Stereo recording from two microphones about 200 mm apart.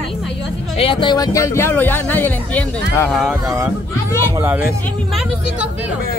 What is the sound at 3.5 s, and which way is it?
Speech, 15° right (ahead or behind).